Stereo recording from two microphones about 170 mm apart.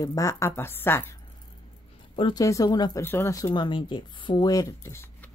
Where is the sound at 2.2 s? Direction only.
25° left (ahead or behind).